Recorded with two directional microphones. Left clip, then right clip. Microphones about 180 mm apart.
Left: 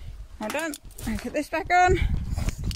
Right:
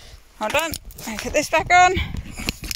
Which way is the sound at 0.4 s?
Centre (ahead or behind).